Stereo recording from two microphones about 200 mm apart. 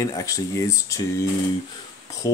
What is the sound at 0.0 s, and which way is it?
Speech, 15° left (ahead or behind).